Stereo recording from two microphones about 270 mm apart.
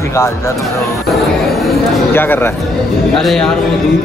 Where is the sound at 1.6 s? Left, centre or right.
Centre.